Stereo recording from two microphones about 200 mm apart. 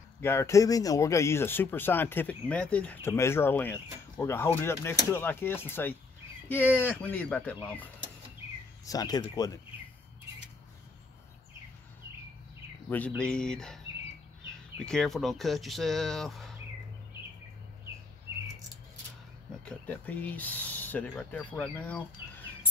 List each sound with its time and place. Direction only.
0.2 s speech: 10° left (ahead or behind)
8.8 s speech: 20° left (ahead or behind)
13.2 s speech: 5° left (ahead or behind)
14.8 s speech: 5° left (ahead or behind)
19.6 s speech: 5° left (ahead or behind)